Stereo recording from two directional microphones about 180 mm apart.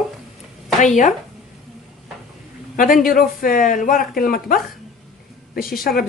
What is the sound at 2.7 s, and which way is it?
A man's voice, 50° left (ahead or behind).